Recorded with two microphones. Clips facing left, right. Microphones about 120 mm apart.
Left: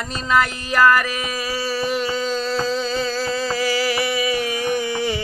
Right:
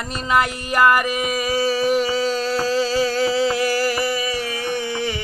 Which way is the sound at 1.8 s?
10° right (ahead or behind).